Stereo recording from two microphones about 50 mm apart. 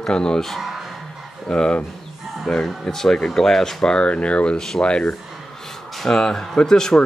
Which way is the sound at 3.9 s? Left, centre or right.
Left.